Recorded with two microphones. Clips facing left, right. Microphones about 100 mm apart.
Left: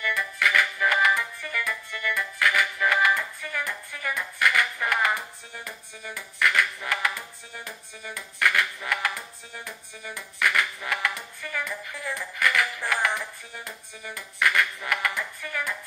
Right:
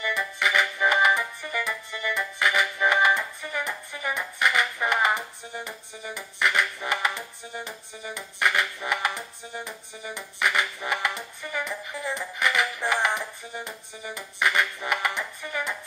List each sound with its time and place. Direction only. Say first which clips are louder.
0.0 s music: even; 20° right (ahead or behind)